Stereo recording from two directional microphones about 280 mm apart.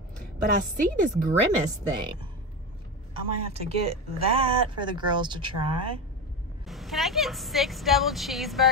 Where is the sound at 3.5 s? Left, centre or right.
Right.